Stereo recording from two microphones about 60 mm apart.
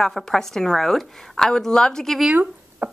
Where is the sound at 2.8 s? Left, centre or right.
Right.